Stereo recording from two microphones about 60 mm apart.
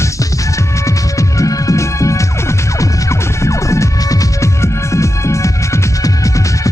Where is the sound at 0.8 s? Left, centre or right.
Left.